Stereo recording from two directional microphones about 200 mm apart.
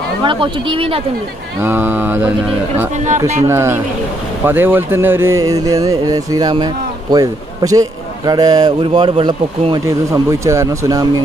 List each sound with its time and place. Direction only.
0.2 s speech: 25° right (ahead or behind)
1.6 s speech: 10° right (ahead or behind)